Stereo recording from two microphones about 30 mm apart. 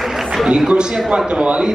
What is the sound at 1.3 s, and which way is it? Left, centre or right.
Speech, right.